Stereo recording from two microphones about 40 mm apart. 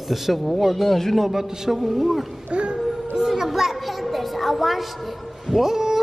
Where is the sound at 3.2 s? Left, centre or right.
Centre.